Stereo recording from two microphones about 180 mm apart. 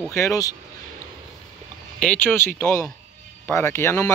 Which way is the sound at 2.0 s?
10° left (ahead or behind).